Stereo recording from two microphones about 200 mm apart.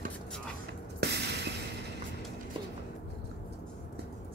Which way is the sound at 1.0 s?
60° right (ahead or behind).